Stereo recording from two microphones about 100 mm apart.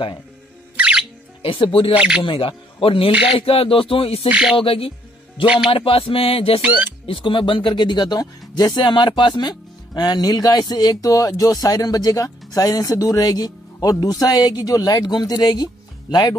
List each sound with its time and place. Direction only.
0.7 s music: 10° right (ahead or behind)
1.4 s speech: 65° left (ahead or behind)
2.0 s speech: 10° right (ahead or behind)
2.2 s speech: 60° left (ahead or behind)
3.3 s a sound: 70° left (ahead or behind)
4.3 s speech: 10° right (ahead or behind)
4.6 s a sound: 70° left (ahead or behind)
7.1 s speech: 60° left (ahead or behind)